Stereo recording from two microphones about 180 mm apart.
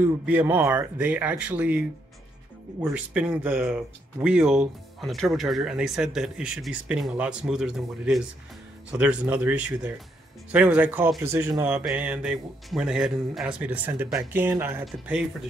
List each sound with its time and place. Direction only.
0.0 s speech: 10° right (ahead or behind)